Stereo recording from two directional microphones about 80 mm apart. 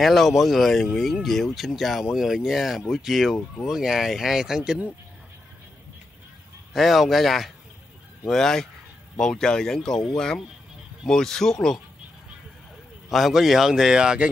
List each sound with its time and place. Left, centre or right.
0.0 s speech: centre
6.7 s speech: centre
13.1 s speech: centre